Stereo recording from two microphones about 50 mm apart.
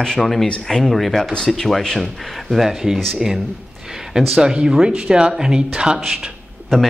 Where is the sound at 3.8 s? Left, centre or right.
Centre.